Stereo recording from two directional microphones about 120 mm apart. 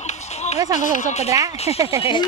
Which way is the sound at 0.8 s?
90° left.